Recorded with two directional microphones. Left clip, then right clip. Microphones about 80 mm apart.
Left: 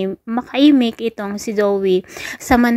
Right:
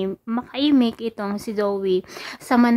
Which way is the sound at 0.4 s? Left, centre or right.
Left.